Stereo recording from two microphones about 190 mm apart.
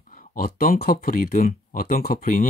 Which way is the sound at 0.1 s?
45° left (ahead or behind).